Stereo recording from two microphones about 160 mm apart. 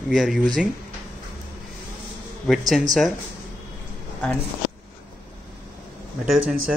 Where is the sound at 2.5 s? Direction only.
Centre (ahead or behind).